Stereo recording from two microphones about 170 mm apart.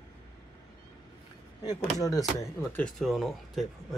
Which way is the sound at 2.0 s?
20° left (ahead or behind).